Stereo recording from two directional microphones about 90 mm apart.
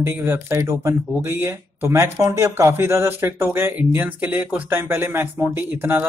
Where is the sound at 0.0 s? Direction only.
30° right (ahead or behind).